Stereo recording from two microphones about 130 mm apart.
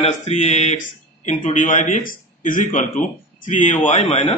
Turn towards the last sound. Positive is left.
turn(degrees=50)  # may be behind; listen again after turning